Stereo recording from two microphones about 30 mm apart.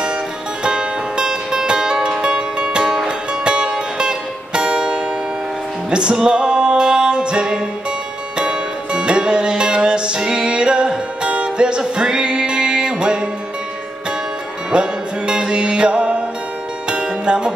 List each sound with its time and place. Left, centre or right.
0.7 s music: right
14.7 s music: right